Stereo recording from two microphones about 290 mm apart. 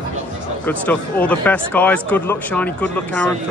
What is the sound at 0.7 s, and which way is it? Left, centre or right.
Speech, centre.